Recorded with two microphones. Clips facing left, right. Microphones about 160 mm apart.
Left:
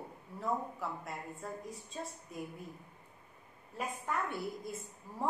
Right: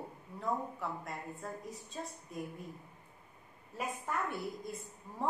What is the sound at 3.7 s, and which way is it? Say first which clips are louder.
A woman's voice: even; centre (ahead or behind).